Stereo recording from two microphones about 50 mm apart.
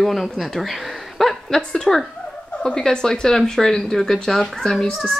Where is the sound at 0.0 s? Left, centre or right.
Centre.